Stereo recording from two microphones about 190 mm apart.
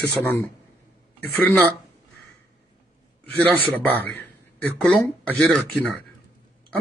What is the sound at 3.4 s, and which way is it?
A man's voice, 10° left (ahead or behind).